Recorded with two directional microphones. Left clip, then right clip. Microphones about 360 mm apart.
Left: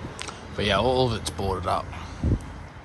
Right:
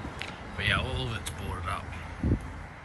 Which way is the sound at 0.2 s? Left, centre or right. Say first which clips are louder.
Left 4 dB; centre.